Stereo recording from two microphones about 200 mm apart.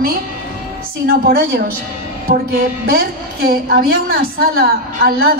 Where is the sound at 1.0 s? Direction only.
50° right (ahead or behind).